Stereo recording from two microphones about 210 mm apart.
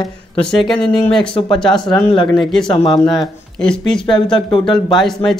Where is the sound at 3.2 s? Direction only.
5° left (ahead or behind).